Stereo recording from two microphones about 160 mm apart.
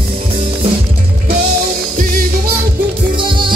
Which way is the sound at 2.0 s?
60° right (ahead or behind).